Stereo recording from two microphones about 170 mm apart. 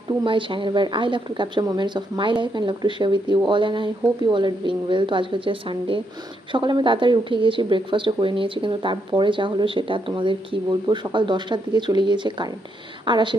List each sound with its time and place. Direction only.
0.2 s speech: 30° right (ahead or behind)